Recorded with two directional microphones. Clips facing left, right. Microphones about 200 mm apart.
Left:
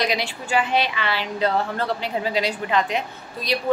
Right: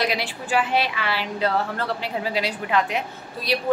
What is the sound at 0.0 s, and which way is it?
A woman's voice, 5° right (ahead or behind).